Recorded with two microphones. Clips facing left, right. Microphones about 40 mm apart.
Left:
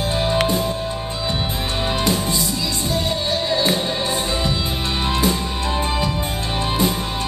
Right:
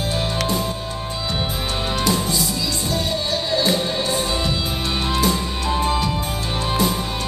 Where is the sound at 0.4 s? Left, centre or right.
Centre.